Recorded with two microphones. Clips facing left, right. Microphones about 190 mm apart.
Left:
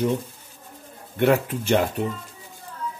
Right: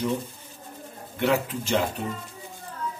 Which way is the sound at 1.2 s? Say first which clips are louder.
Left 4 dB; 55° left (ahead or behind).